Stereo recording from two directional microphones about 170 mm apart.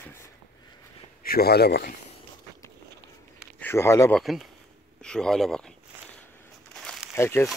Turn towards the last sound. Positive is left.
turn(degrees=15)  # may be behind; listen again after turning